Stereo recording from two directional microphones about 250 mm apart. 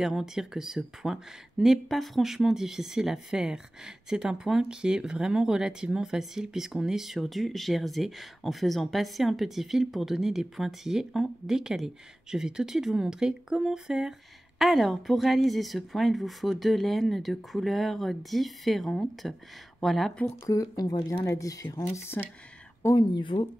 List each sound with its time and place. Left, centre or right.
0.0 s speech: centre
20.4 s speech: centre